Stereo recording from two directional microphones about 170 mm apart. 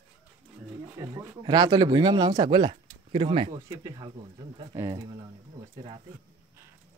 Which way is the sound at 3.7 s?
20° right (ahead or behind).